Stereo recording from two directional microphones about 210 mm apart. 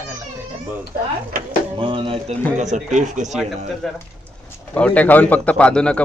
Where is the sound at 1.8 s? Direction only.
25° right (ahead or behind).